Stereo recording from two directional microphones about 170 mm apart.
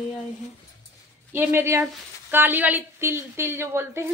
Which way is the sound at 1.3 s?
15° right (ahead or behind).